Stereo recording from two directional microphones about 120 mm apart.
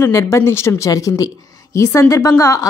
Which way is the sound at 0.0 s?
25° left (ahead or behind).